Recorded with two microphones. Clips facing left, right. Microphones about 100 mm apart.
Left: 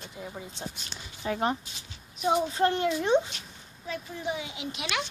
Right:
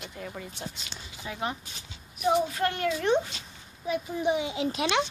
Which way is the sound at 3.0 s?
15° left (ahead or behind).